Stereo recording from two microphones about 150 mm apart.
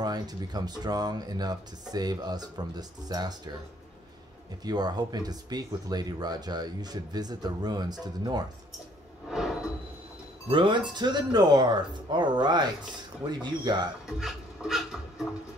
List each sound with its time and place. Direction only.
0.0 s speech: 25° right (ahead or behind)
4.6 s speech: 25° right (ahead or behind)
9.3 s a sound: centre (ahead or behind)
10.5 s speech: 30° right (ahead or behind)
14.0 s music: centre (ahead or behind)